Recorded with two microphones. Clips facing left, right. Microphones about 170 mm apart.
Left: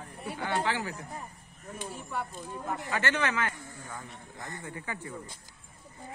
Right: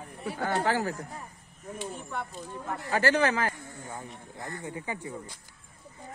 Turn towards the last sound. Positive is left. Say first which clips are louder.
# right 3 dB
turn(degrees=-20)  # may be behind; listen again after turning